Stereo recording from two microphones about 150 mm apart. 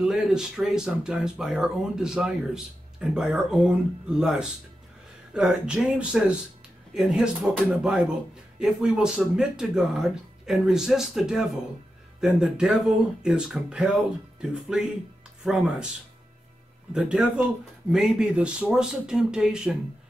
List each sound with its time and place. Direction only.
0.0 s speech: 5° right (ahead or behind)
16.9 s speech: 5° right (ahead or behind)